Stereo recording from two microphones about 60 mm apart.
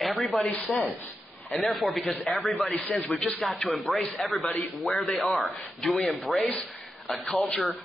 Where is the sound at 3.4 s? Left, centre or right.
Centre.